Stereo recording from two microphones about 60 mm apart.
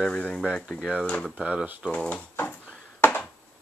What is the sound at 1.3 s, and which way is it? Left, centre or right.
Speech, centre.